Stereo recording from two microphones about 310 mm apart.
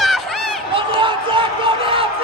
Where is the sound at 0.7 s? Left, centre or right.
Centre.